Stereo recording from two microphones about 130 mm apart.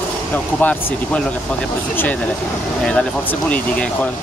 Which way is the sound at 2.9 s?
10° left (ahead or behind).